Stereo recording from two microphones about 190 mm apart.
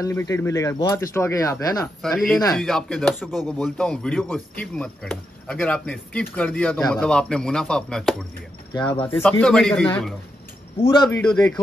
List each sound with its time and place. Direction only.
0.0 s speech: 15° left (ahead or behind)
2.0 s speech: centre (ahead or behind)
9.4 s speech: 5° left (ahead or behind)
10.8 s speech: 25° left (ahead or behind)
11.1 s speech: 10° left (ahead or behind)
11.3 s speech: 20° left (ahead or behind)